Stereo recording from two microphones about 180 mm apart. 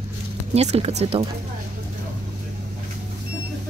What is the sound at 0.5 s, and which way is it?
Speech, 35° right (ahead or behind).